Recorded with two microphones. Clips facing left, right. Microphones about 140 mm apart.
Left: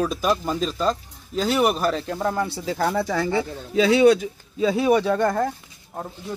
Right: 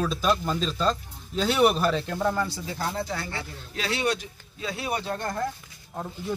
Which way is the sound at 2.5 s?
75° left (ahead or behind).